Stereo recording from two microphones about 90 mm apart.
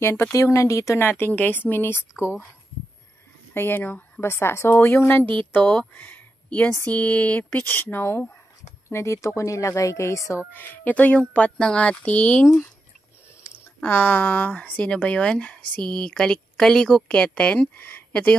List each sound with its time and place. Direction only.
0.0 s a woman's voice: 30° left (ahead or behind)
3.5 s a woman's voice: 25° left (ahead or behind)
10.5 s speech: 20° left (ahead or behind)
13.8 s speech: 25° left (ahead or behind)